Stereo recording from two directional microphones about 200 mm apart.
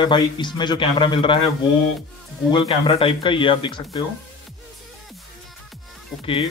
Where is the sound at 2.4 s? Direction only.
25° left (ahead or behind).